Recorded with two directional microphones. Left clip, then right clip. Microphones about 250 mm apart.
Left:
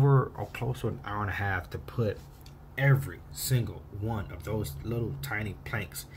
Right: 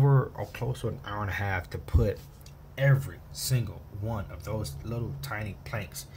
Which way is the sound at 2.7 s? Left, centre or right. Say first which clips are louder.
Even; centre.